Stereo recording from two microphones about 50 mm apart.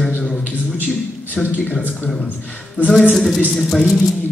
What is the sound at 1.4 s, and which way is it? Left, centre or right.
Speech, centre.